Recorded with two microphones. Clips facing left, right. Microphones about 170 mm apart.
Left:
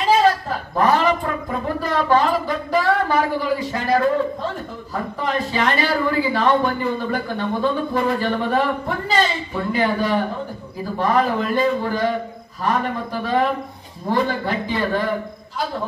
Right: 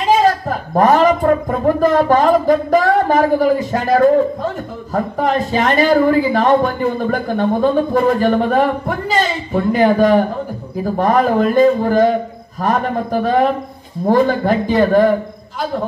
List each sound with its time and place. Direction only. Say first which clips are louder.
0.1 s a woman's voice: right 3 dB; 45° right (ahead or behind)